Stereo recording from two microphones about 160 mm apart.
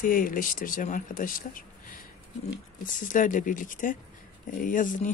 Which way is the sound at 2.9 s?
55° left (ahead or behind).